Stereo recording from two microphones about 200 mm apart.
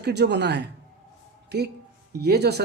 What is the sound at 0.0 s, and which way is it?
Speech, 55° right (ahead or behind).